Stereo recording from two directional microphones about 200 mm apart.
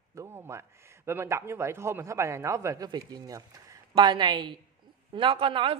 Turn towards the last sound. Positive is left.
turn(degrees=-25)  # may be behind; listen again after turning